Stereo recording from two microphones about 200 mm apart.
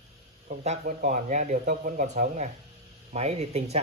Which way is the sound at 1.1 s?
35° right (ahead or behind).